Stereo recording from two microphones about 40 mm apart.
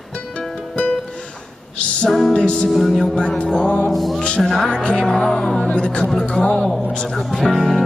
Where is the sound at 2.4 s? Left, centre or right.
Left.